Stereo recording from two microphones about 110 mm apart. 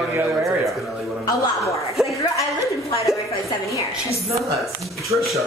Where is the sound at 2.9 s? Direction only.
30° left (ahead or behind).